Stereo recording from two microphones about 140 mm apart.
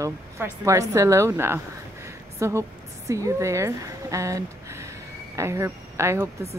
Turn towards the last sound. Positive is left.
turn(degrees=-20)  # may be behind; listen again after turning